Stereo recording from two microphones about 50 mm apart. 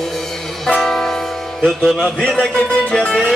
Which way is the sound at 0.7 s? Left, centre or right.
Centre.